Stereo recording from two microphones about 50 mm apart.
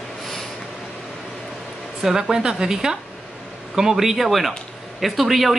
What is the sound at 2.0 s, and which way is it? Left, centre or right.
A woman's voice, centre.